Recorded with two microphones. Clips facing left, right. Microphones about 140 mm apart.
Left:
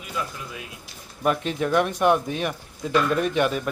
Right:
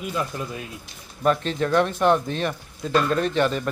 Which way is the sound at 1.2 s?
10° left (ahead or behind).